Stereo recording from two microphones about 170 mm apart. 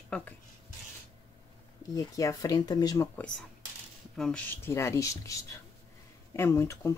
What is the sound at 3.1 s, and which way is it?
Speech, 5° left (ahead or behind).